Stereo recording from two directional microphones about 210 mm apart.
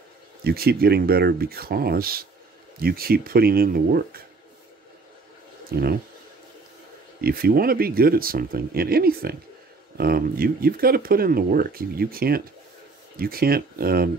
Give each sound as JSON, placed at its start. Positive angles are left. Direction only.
{"t": 0.4, "sound": "speech", "side_deg": -50}
{"t": 5.7, "sound": "speech", "side_deg": -45}
{"t": 7.2, "sound": "speech", "side_deg": -45}